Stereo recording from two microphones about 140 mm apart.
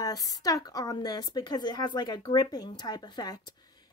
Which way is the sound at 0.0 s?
25° left (ahead or behind).